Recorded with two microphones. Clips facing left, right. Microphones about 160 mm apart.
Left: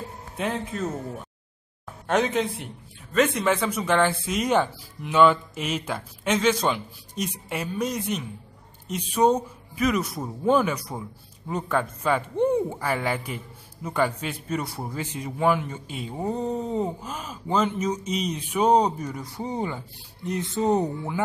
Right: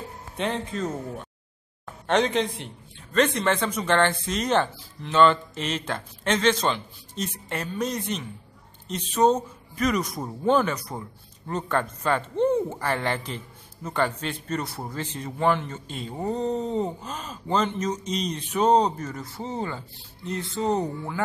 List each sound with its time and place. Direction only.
0.4 s a man's voice: 5° left (ahead or behind)
2.0 s a man's voice: 5° left (ahead or behind)